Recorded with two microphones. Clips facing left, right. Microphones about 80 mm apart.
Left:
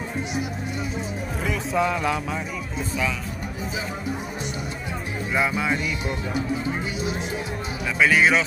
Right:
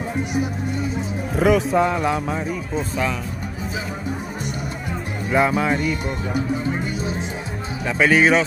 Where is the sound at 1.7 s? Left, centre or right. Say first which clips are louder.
Right 4 dB; right.